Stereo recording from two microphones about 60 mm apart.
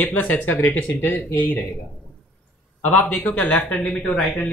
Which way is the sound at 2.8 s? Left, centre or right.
Left.